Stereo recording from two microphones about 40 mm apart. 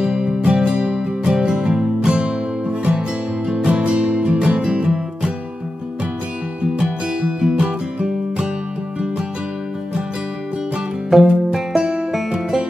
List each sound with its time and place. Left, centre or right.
0.0 s music: centre
6.8 s music: right
11.2 s music: centre